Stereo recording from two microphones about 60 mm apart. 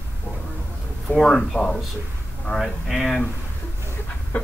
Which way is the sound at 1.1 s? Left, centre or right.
Centre.